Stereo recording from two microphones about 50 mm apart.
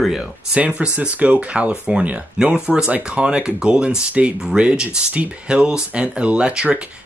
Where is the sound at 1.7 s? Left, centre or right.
Centre.